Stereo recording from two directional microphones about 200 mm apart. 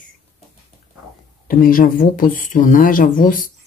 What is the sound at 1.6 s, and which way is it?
Speech, 45° left (ahead or behind).